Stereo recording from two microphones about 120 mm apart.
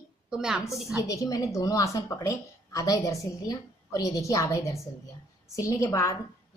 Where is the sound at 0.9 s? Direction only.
25° left (ahead or behind).